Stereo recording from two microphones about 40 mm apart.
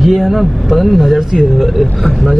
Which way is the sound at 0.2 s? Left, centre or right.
Centre.